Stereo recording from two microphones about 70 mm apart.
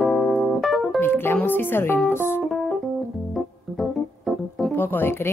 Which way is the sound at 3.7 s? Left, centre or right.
Centre.